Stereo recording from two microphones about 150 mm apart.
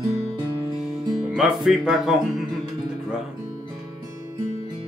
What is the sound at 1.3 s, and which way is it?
Speech, centre (ahead or behind).